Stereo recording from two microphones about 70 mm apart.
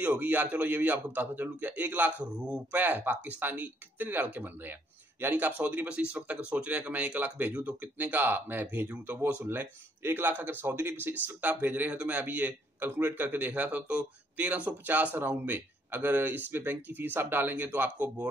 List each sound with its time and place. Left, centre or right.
0.0 s speech: right